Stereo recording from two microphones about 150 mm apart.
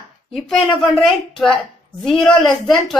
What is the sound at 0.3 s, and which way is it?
Speech, centre (ahead or behind).